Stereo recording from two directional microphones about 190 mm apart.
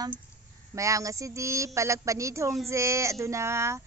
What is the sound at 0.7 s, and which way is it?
Speech, 15° right (ahead or behind).